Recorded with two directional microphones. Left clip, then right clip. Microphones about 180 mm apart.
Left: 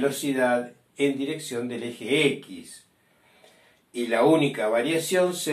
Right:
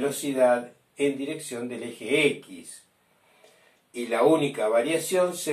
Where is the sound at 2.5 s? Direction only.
Centre (ahead or behind).